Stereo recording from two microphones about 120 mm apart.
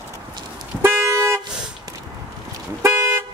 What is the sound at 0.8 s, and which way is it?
Toot, 25° right (ahead or behind).